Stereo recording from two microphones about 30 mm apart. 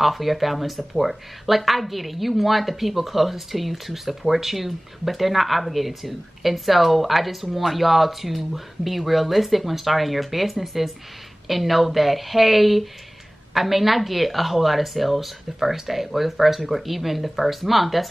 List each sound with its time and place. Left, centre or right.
0.0 s speech: centre